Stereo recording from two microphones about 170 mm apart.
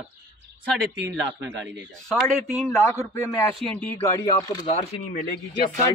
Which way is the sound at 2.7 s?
15° left (ahead or behind).